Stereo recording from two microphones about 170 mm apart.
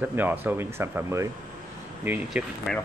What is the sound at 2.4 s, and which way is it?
Speech, 5° right (ahead or behind).